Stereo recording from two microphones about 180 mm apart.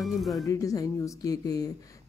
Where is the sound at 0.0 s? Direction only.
Centre (ahead or behind).